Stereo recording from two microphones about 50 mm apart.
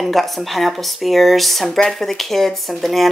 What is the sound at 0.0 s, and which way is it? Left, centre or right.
A woman's voice, centre.